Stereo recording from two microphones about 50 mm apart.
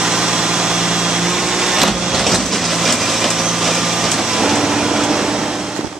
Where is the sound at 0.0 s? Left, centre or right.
Centre.